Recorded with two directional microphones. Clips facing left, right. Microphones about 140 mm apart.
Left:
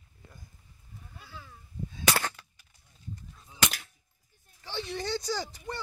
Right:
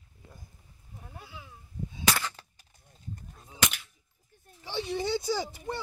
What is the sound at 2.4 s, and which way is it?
Gunshot, 35° right (ahead or behind).